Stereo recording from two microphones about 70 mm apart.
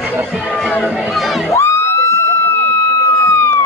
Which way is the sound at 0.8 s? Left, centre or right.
Centre.